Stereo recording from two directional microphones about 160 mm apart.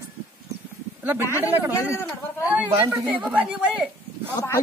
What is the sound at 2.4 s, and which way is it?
Speech, 10° right (ahead or behind).